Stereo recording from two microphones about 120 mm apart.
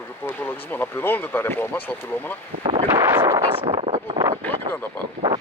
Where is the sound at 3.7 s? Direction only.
50° right (ahead or behind).